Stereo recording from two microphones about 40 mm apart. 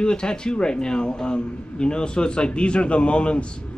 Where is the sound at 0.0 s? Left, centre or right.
Left.